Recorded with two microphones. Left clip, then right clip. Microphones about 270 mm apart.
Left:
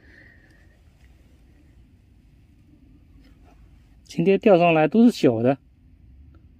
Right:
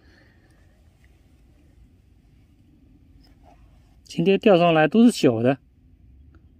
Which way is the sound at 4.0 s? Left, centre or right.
Centre.